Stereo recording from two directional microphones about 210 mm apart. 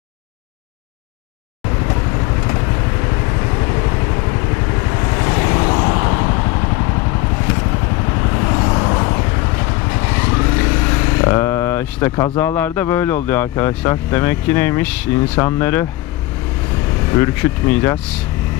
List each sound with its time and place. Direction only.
3.5 s vehicle: 15° left (ahead or behind)
8.2 s vehicle: 20° left (ahead or behind)
15.3 s speech: 10° left (ahead or behind)
17.1 s speech: 10° left (ahead or behind)